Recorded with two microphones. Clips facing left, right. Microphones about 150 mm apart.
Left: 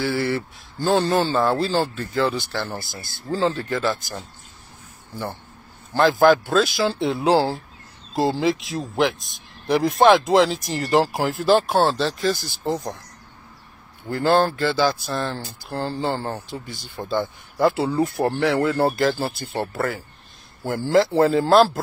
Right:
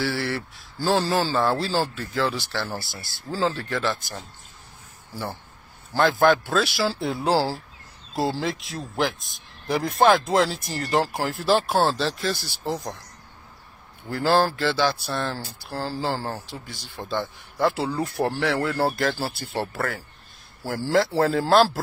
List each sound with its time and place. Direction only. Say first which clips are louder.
0.0 s speech: left 4 dB; centre (ahead or behind)
5.9 s speech: left 3 dB; centre (ahead or behind)
14.1 s speech: left 2 dB; 5° right (ahead or behind)